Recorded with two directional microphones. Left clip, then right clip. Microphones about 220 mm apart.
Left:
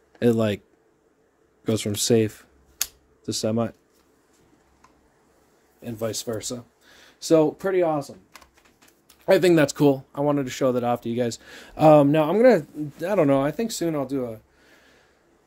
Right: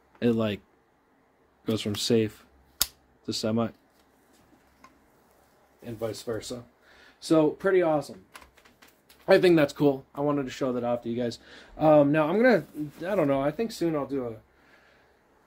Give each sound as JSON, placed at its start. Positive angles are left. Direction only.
{"t": 0.2, "sound": "speech", "side_deg": 20}
{"t": 1.6, "sound": "speech", "side_deg": 20}
{"t": 5.8, "sound": "speech", "side_deg": 50}
{"t": 9.2, "sound": "speech", "side_deg": 35}